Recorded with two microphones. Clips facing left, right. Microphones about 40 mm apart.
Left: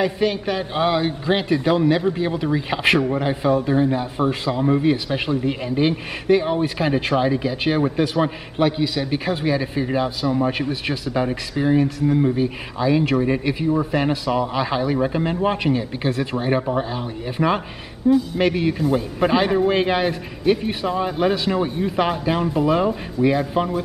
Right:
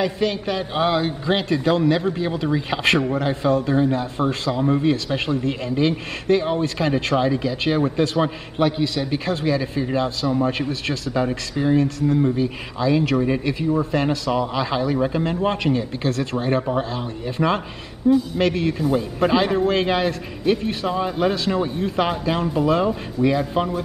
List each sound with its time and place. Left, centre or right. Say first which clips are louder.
0.0 s a man's voice: left 1 dB; centre
18.1 s a man's voice: left 1 dB; centre
21.5 s a man's voice: left 1 dB; centre
21.8 s speech: left 1 dB; centre